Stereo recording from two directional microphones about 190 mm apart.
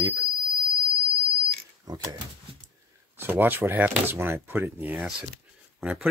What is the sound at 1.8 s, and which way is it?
Speech, 20° right (ahead or behind).